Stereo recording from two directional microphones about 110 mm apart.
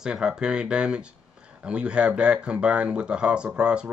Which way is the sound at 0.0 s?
5° right (ahead or behind).